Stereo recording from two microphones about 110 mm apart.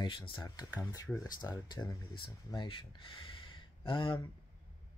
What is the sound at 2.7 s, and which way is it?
Speech, 50° left (ahead or behind).